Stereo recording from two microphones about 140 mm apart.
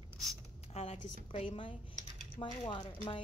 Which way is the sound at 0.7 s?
55° left (ahead or behind).